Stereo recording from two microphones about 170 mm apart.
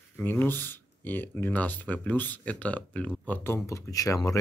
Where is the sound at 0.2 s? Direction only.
10° left (ahead or behind).